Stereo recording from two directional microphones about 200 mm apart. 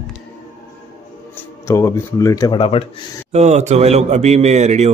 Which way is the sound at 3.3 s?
35° right (ahead or behind).